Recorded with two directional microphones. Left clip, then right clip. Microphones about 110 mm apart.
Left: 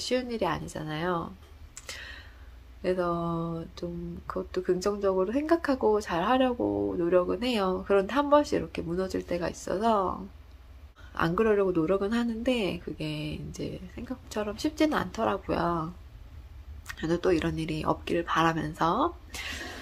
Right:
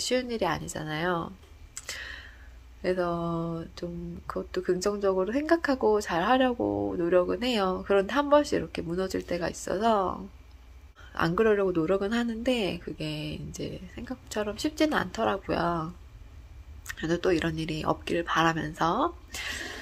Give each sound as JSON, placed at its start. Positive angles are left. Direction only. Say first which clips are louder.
{"t": 0.0, "sound": "speech", "louder": "right 1 dB", "side_deg": -20}
{"t": 1.8, "sound": "a sound", "louder": "right 3 dB", "side_deg": -25}
{"t": 2.8, "sound": "speech", "louder": "even", "side_deg": -20}